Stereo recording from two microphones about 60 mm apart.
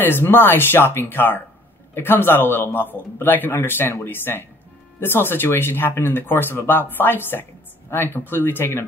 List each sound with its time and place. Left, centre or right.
0.0 s speech: left